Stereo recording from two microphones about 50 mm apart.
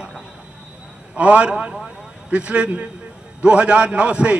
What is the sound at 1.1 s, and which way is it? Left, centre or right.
A man's voice, right.